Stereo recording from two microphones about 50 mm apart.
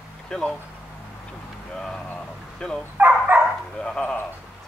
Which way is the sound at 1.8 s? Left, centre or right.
Centre.